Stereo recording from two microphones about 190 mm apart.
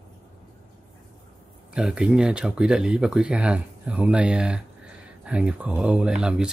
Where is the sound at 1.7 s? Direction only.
5° right (ahead or behind).